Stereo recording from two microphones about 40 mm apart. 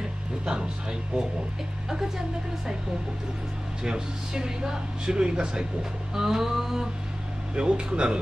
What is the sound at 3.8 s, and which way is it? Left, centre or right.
Speech, centre.